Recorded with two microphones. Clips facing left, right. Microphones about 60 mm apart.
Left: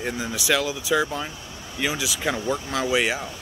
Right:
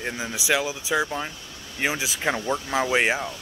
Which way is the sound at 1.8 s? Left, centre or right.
Right.